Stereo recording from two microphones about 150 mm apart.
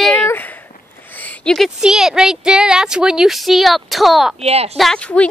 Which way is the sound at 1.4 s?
5° left (ahead or behind).